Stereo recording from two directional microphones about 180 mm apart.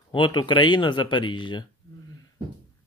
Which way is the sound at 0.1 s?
25° left (ahead or behind).